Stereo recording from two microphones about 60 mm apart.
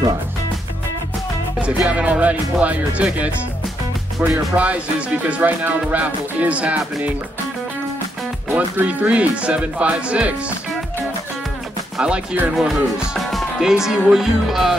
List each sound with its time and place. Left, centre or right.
1.9 s music: right
4.6 s music: right
8.5 s speech: right
8.8 s music: right
12.0 s speech: centre
12.5 s speech: centre